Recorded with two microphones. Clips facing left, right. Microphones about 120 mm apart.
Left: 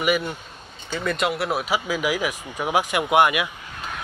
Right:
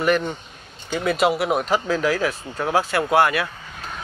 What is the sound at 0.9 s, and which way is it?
Speech, 5° right (ahead or behind).